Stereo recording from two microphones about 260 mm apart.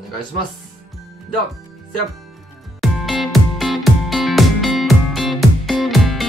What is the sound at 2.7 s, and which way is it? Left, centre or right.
Music, centre.